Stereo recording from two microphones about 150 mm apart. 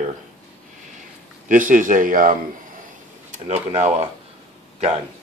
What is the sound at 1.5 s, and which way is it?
Speech, 60° right (ahead or behind).